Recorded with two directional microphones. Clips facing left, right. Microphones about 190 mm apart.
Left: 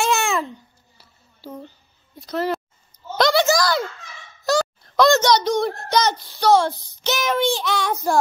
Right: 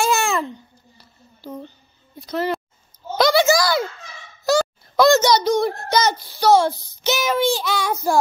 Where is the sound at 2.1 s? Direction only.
Centre (ahead or behind).